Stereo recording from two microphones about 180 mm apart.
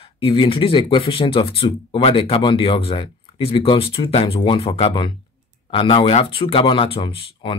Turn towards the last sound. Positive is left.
turn(degrees=30)  # may be behind; listen again after turning